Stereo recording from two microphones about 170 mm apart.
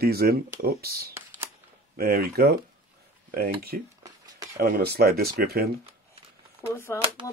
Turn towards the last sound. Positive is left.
turn(degrees=15)  # may be behind; listen again after turning